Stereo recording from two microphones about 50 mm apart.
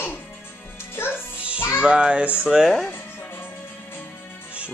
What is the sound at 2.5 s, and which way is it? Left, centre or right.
Speech, centre.